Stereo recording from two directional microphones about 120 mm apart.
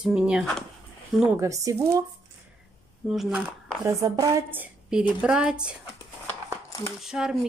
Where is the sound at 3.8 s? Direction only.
25° right (ahead or behind).